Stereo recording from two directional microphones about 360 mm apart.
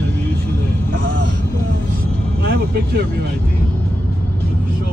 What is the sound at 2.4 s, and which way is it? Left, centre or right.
Vehicle, right.